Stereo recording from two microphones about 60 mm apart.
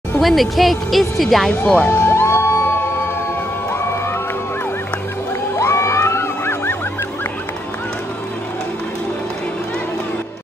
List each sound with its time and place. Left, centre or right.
0.2 s a woman's voice: centre
1.5 s speech: left
1.9 s music: left
5.6 s music: left